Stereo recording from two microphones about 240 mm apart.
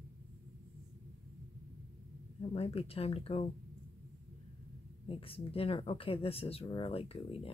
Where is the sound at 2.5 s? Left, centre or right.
Left.